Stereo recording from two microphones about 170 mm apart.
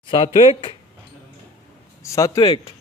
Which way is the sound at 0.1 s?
30° left (ahead or behind).